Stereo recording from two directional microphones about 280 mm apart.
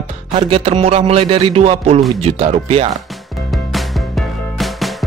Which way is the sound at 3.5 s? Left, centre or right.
Centre.